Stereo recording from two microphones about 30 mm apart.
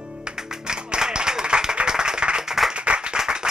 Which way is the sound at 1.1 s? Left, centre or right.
Right.